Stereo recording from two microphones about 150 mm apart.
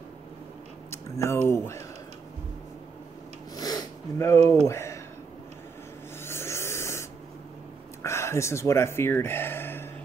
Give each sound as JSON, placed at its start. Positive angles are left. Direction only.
{"t": 0.8, "sound": "a sound", "side_deg": 20}
{"t": 1.5, "sound": "speech", "side_deg": 20}
{"t": 3.5, "sound": "sniff", "side_deg": 25}
{"t": 4.6, "sound": "speech", "side_deg": 20}
{"t": 6.2, "sound": "spray", "side_deg": 15}
{"t": 8.0, "sound": "speech", "side_deg": 20}